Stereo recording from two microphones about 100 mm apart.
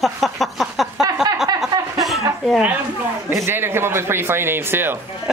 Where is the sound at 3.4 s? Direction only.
25° right (ahead or behind).